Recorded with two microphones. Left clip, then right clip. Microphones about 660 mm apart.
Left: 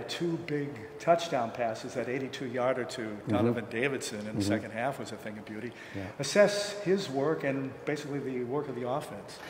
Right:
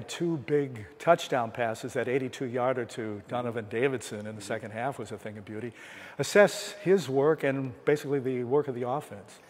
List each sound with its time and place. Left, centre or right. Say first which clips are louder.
0.5 s a man's voice: right 6 dB; right
6.1 s a man's voice: right 2 dB; right